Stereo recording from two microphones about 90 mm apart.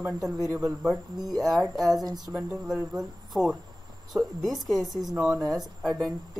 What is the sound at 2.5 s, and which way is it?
Speech, 5° right (ahead or behind).